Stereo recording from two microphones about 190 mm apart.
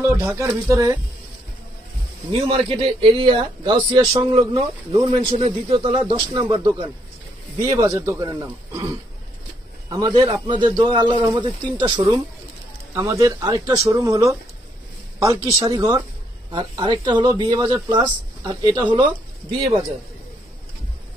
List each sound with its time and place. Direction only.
0.0 s a man's voice: 15° right (ahead or behind)
2.4 s a man's voice: 30° right (ahead or behind)